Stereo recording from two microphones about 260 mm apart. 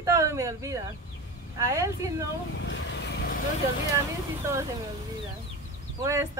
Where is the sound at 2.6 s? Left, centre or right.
Left.